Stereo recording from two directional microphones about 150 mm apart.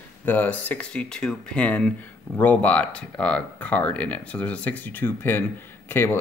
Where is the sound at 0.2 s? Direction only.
10° left (ahead or behind).